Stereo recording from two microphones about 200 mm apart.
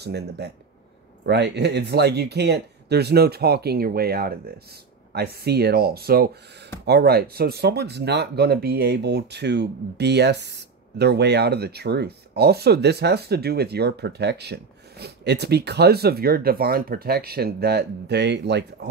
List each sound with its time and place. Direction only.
0.0 s speech: 55° right (ahead or behind)